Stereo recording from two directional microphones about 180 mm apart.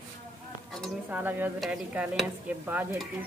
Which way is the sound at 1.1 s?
10° right (ahead or behind).